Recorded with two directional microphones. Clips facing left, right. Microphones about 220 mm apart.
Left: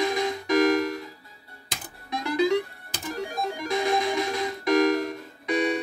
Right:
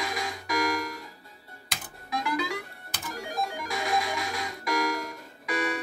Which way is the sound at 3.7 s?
25° left (ahead or behind).